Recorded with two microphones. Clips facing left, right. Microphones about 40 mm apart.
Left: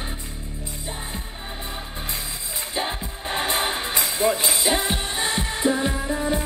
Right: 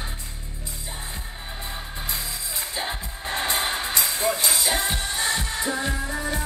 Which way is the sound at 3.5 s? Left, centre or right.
Left.